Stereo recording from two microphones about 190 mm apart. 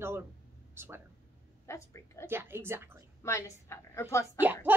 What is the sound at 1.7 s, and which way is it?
Speech, 15° left (ahead or behind).